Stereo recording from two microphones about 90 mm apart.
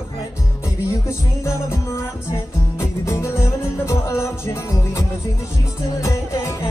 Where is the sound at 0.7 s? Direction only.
35° left (ahead or behind).